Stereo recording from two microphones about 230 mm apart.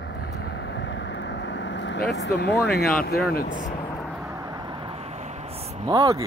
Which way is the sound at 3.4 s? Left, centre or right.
Left.